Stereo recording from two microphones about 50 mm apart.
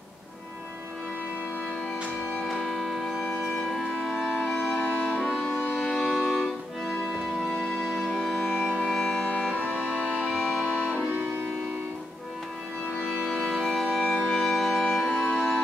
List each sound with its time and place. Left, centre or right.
2.6 s music: centre
4.2 s music: centre
4.6 s music: left
6.0 s music: centre
8.5 s music: centre
9.6 s music: left
10.3 s music: centre
11.0 s music: right
13.1 s organ: centre
14.0 s music: centre
14.5 s music: centre